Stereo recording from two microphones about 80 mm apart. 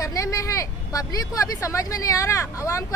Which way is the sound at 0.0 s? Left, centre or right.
Left.